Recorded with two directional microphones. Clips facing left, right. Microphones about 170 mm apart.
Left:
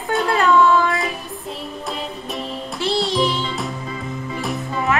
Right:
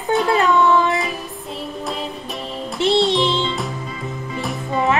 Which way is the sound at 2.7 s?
20° right (ahead or behind).